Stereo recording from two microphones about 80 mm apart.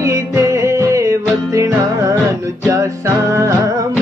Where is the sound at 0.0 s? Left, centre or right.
Right.